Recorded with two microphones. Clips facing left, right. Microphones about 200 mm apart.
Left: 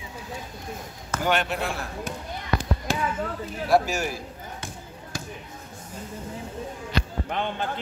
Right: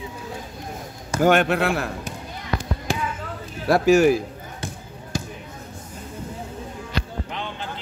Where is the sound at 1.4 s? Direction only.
75° right (ahead or behind).